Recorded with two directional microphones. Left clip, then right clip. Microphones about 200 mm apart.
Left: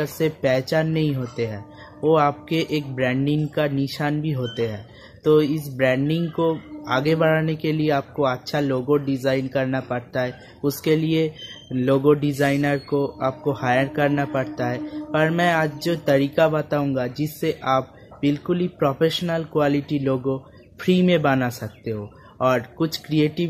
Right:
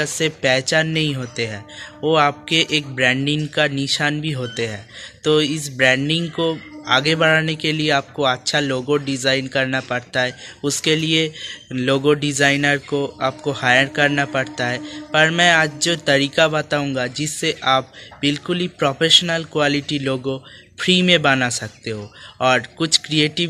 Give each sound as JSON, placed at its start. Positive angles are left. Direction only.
{"t": 0.0, "sound": "speech", "side_deg": 5}